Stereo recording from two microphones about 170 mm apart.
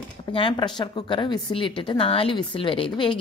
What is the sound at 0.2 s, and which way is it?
A woman's voice, 30° left (ahead or behind).